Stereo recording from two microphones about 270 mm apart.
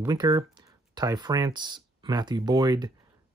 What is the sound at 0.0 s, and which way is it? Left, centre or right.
Speech, centre.